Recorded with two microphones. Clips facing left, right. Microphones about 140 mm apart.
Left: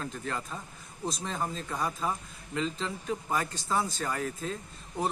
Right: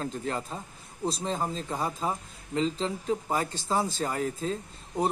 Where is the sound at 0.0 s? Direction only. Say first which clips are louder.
Right 4 dB; 30° right (ahead or behind).